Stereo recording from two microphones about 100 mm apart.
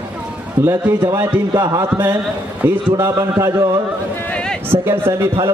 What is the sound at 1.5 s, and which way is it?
Music, 40° right (ahead or behind).